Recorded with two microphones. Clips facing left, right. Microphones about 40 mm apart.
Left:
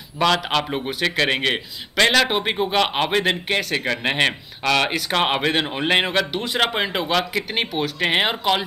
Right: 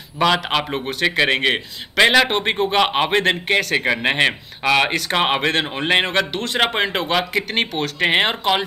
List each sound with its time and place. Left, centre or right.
0.2 s speech: centre